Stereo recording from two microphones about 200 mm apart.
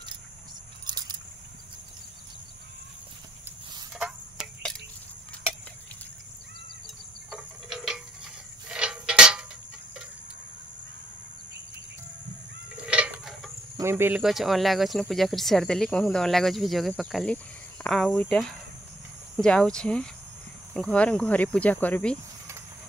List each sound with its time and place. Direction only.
0.8 s keys jangling: 20° right (ahead or behind)
4.0 s tick-tock: centre (ahead or behind)
7.2 s insect: centre (ahead or behind)
8.6 s a sound: 5° right (ahead or behind)
12.8 s a sound: 5° right (ahead or behind)
13.7 s speech: 10° right (ahead or behind); by 22.2 s 5° left (ahead or behind)